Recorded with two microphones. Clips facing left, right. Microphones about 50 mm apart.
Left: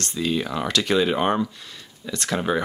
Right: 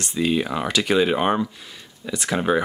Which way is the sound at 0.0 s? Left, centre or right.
Centre.